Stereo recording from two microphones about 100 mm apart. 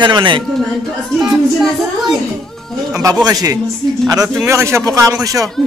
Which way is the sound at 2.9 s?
35° right (ahead or behind).